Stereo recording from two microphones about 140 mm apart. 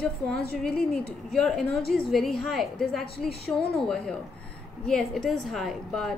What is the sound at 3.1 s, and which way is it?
Speech, 90° left.